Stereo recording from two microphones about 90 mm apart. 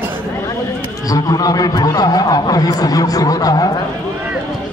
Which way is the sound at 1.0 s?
40° left (ahead or behind).